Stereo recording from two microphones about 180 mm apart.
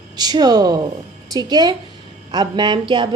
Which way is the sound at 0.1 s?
20° right (ahead or behind).